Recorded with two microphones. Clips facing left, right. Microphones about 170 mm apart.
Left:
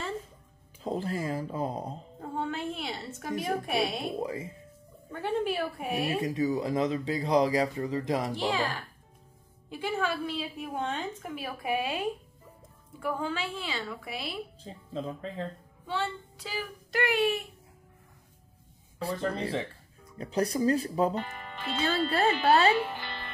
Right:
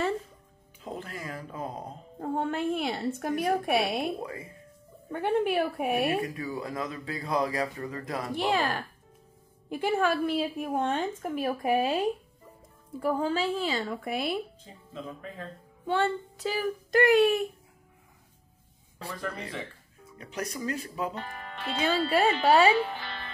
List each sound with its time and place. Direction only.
0.8 s speech: 30° left (ahead or behind)
2.1 s a woman's voice: 55° right (ahead or behind)
4.2 s speech: 20° left (ahead or behind)
5.2 s a woman's voice: 60° right (ahead or behind)
6.2 s speech: 25° left (ahead or behind)
8.5 s a woman's voice: 55° right (ahead or behind)
13.0 s a woman's voice: 40° right (ahead or behind)
14.6 s speech: 30° left (ahead or behind)
15.9 s a woman's voice: 50° right (ahead or behind)
19.0 s speech: 30° left (ahead or behind)
21.2 s speech: centre (ahead or behind)
21.7 s speech: 10° right (ahead or behind)
22.8 s speech: centre (ahead or behind)